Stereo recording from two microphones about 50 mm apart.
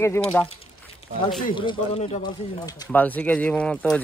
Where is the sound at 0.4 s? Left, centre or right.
Left.